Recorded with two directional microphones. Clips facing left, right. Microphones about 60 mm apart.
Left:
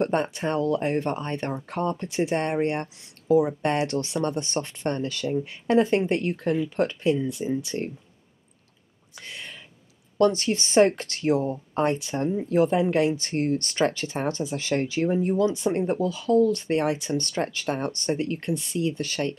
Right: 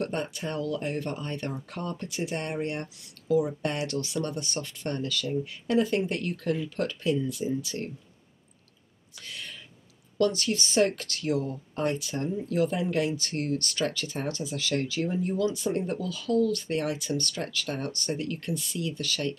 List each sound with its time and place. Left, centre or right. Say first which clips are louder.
0.0 s speech: left 7 dB; left
9.1 s a sound: left 2 dB; left
10.1 s speech: left 4 dB; left